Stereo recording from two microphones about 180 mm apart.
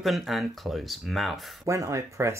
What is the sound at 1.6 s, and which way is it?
Speech, 15° right (ahead or behind).